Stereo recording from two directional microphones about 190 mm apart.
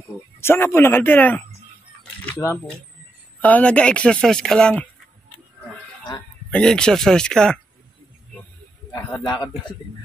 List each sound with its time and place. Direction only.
0.4 s a man's voice: 15° left (ahead or behind)
6.5 s speech: 5° left (ahead or behind)
9.2 s a man's voice: 20° left (ahead or behind)